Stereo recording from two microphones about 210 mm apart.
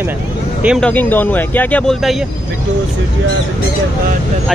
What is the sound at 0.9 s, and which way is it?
Speech, 10° left (ahead or behind).